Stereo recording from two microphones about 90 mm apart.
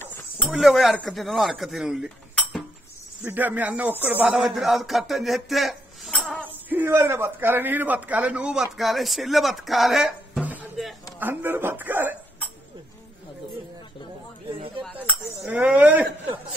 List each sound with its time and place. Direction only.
0.0 s a sound: 25° left (ahead or behind)
0.5 s speech: 5° right (ahead or behind)
3.2 s a man's voice: 20° right (ahead or behind)
4.4 s speech: centre (ahead or behind)
6.7 s a man's voice: 25° right (ahead or behind)
8.7 s speech: centre (ahead or behind)
11.1 s a man's voice: 20° right (ahead or behind)
15.4 s speech: 15° right (ahead or behind)